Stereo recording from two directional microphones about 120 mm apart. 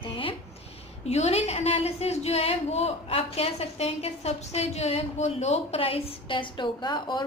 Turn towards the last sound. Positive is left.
turn(degrees=40)  # may be behind; listen again after turning